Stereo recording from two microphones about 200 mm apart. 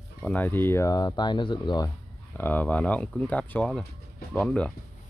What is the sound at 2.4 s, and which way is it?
Speech, 10° left (ahead or behind).